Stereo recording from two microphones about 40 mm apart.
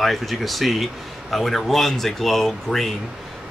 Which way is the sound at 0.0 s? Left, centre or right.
Centre.